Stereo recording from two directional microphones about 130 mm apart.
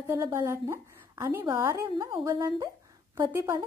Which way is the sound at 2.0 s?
40° right (ahead or behind).